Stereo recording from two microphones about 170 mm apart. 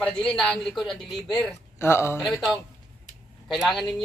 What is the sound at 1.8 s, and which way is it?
Speech, 15° left (ahead or behind).